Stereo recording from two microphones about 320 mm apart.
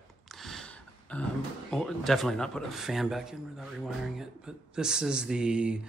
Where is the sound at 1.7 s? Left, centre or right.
Centre.